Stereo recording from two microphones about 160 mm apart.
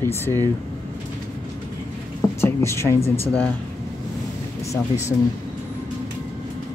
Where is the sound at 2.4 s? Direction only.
15° left (ahead or behind).